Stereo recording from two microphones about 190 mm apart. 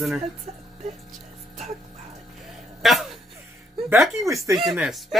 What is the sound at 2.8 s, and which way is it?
Speech, centre (ahead or behind).